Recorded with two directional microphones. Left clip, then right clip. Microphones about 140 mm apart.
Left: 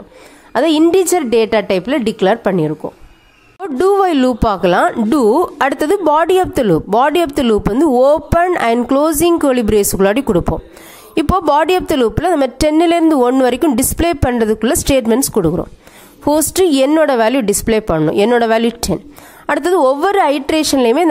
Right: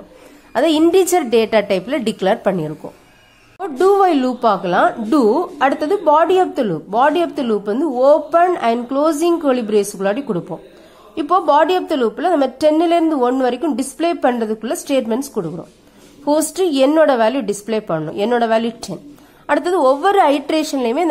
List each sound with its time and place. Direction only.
0.5 s a woman's voice: 30° left (ahead or behind)
3.6 s a woman's voice: 50° left (ahead or behind)